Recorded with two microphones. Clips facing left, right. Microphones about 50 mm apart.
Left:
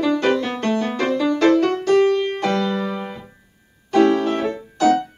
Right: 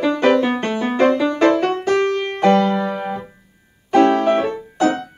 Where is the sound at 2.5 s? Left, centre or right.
Right.